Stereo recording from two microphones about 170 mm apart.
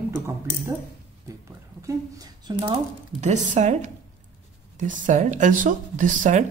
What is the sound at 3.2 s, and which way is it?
Speech, 45° right (ahead or behind).